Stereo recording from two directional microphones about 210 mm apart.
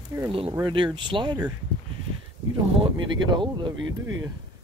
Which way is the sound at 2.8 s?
20° right (ahead or behind).